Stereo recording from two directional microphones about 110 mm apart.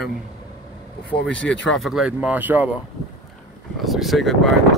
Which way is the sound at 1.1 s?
10° left (ahead or behind).